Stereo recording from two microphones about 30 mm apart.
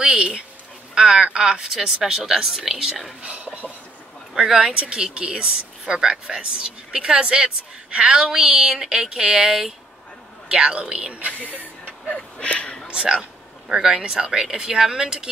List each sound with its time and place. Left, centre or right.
0.0 s dog: right
0.9 s speech: right
1.7 s speech: centre
3.2 s speech: right
12.1 s a sound: left
12.9 s speech: right